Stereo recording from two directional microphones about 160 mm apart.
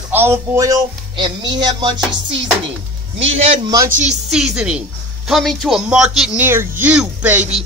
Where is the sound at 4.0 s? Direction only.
5° right (ahead or behind).